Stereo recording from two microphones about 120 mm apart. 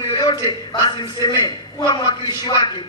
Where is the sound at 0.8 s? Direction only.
35° left (ahead or behind).